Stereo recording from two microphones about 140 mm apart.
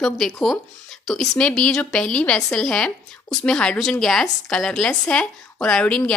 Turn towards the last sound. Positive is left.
turn(degrees=5)  # may be behind; listen again after turning